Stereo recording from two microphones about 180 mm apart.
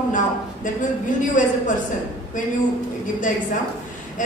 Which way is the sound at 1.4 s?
45° left (ahead or behind).